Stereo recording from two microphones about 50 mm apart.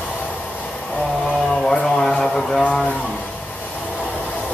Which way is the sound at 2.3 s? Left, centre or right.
Centre.